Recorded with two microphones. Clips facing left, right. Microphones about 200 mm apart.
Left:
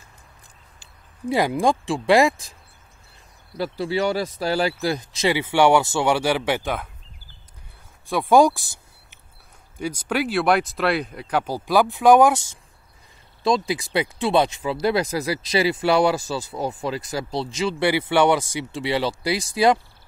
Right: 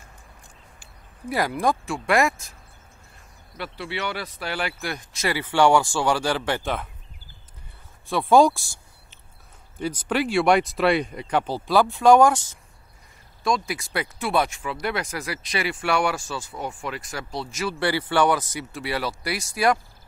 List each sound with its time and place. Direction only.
1.3 s speech: 20° left (ahead or behind)
3.5 s speech: 40° left (ahead or behind)
5.2 s speech: 15° left (ahead or behind)
6.3 s speech: 10° left (ahead or behind)
8.2 s speech: 15° left (ahead or behind)
9.8 s speech: 10° left (ahead or behind)
13.4 s speech: 30° left (ahead or behind)
13.7 s speech: 15° left (ahead or behind)
17.6 s speech: 20° left (ahead or behind)